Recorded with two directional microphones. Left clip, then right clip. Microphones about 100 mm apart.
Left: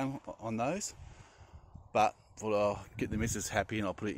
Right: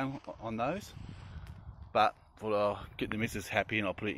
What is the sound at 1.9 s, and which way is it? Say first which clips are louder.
Speech: right 1 dB; 35° left (ahead or behind).